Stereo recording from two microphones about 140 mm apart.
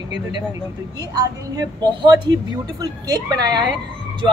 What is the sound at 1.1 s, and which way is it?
A woman's voice, 30° right (ahead or behind).